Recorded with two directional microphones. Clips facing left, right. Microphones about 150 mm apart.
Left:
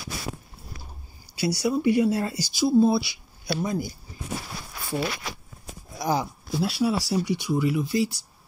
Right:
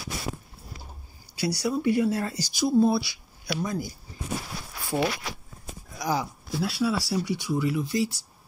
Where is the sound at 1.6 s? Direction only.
10° left (ahead or behind).